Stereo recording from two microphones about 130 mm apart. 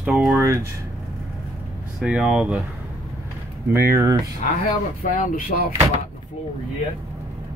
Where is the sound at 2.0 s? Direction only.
5° right (ahead or behind).